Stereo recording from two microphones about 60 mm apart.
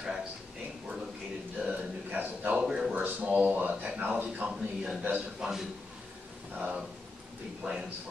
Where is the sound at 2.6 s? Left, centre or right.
Centre.